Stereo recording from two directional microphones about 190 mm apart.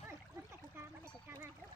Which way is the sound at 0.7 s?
10° right (ahead or behind).